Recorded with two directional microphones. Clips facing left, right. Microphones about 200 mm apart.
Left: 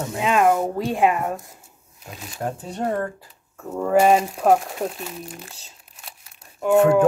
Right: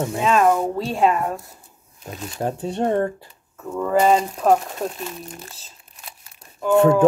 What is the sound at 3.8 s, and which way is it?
Speech, 10° left (ahead or behind).